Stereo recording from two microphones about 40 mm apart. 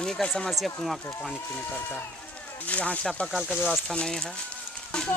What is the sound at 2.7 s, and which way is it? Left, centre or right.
Speech, left.